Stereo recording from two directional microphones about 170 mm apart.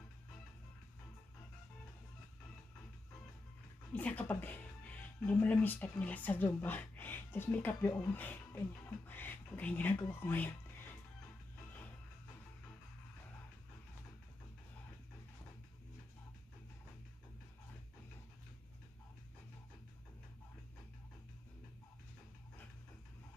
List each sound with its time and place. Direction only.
3.9 s speech: 10° left (ahead or behind)